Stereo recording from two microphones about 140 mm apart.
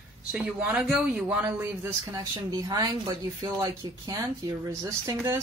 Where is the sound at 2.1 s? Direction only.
25° right (ahead or behind).